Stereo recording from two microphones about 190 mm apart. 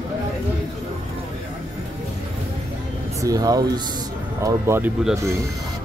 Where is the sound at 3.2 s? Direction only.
20° right (ahead or behind).